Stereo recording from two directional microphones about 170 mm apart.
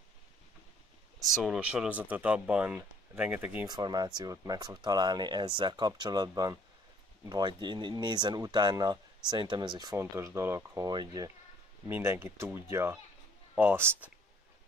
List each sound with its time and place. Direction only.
1.3 s speech: 5° right (ahead or behind)
3.6 s speech: 25° right (ahead or behind)